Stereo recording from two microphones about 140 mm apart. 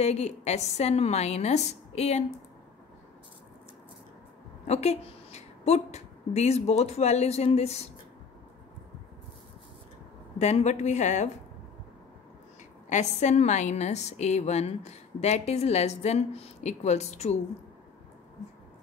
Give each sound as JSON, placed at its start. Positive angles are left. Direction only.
{"t": 0.0, "sound": "a woman's voice", "side_deg": 50}
{"t": 4.6, "sound": "a woman's voice", "side_deg": 50}
{"t": 10.4, "sound": "a woman's voice", "side_deg": 55}
{"t": 12.9, "sound": "a woman's voice", "side_deg": 55}